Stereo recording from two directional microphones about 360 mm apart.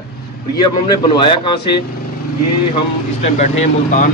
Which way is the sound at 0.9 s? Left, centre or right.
Centre.